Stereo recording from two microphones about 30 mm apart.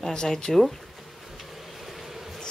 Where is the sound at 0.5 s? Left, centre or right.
Centre.